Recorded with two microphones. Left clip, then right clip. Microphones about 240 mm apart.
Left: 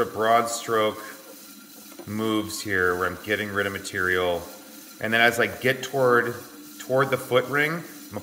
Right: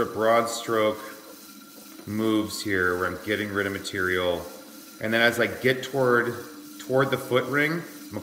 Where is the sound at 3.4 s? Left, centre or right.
Left.